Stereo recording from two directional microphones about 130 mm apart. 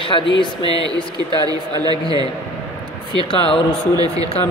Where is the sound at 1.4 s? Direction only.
30° right (ahead or behind).